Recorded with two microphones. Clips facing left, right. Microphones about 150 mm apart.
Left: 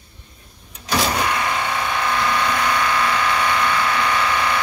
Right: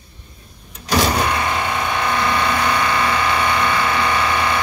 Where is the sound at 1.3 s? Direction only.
20° right (ahead or behind).